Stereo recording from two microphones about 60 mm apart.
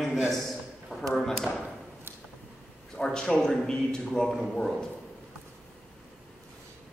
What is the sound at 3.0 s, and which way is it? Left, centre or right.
A man's voice, centre.